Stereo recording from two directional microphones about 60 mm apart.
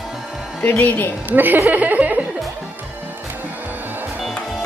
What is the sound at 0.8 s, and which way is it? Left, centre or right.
Speech, left.